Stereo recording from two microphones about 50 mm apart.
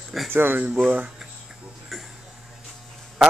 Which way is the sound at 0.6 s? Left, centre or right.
Right.